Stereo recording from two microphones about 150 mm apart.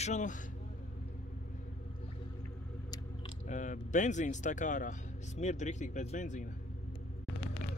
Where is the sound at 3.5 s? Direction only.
55° left (ahead or behind).